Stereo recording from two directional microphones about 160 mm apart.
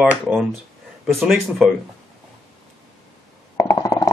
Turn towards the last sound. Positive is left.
turn(degrees=25)  # may be behind; listen again after turning